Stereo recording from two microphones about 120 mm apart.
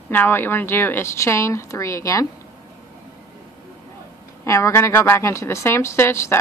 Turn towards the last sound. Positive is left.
turn(degrees=20)  # may be behind; listen again after turning